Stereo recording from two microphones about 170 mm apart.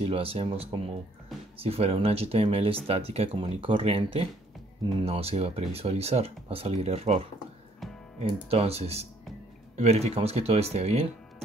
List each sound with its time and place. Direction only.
0.0 s speech: 35° right (ahead or behind)
7.8 s music: centre (ahead or behind)
8.5 s speech: 35° right (ahead or behind)